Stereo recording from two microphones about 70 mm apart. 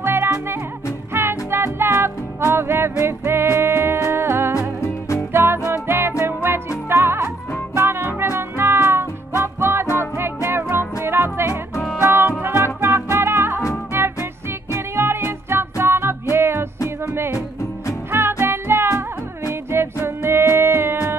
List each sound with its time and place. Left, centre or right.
0.0 s music: right
4.6 s music: left
5.3 s music: right